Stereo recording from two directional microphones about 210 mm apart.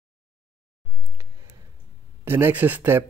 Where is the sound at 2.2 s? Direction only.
10° right (ahead or behind).